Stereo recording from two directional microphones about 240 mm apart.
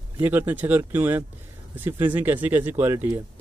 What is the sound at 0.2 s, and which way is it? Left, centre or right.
Speech, centre.